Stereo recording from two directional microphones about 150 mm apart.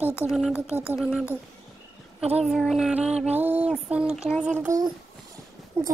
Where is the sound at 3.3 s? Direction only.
10° right (ahead or behind).